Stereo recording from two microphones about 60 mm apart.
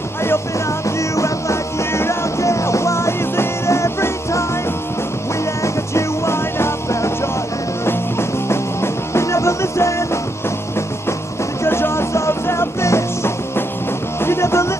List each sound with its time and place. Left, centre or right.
0.8 s music: left
5.6 s music: left
11.6 s music: left